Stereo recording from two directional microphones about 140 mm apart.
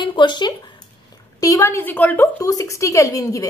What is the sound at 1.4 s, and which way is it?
Speech, 20° left (ahead or behind).